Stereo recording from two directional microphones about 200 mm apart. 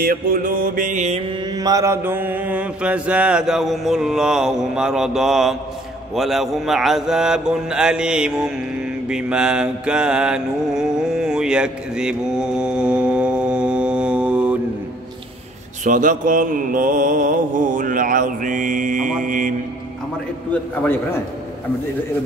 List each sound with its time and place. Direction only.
0.0 s music: 45° right (ahead or behind)
1.4 s mantra: 20° right (ahead or behind)
15.8 s mantra: 40° right (ahead or behind)
20.8 s a man's voice: 10° left (ahead or behind)